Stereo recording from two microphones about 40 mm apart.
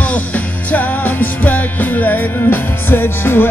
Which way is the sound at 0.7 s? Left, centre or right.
Left.